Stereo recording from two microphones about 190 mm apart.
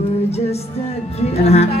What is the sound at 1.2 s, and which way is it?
Speech, 35° left (ahead or behind).